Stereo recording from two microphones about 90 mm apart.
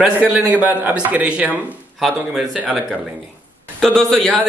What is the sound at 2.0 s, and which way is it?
Speech, centre (ahead or behind).